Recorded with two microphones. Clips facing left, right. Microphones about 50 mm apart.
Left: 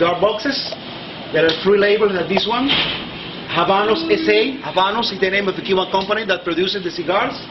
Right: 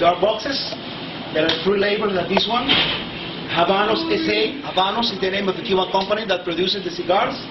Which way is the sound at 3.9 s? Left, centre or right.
Left.